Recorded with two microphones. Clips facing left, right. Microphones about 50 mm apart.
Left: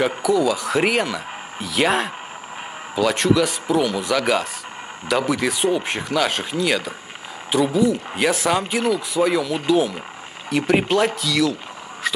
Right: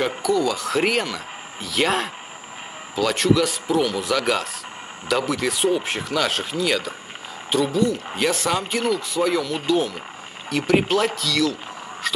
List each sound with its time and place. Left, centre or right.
0.0 s speech: centre